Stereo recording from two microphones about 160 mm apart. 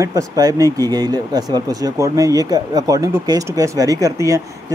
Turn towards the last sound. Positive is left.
turn(degrees=-20)  # may be behind; listen again after turning